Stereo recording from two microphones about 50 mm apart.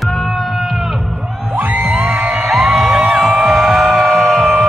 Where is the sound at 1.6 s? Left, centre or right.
Right.